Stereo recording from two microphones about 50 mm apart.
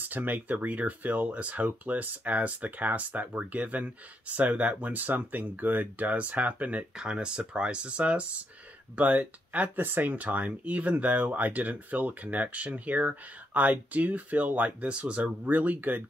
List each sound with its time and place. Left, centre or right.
0.1 s speech: right